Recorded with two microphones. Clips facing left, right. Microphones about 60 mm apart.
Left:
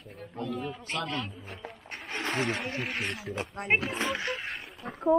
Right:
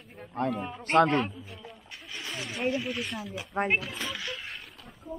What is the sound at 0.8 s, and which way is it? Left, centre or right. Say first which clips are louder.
Speech: right 12 dB; right.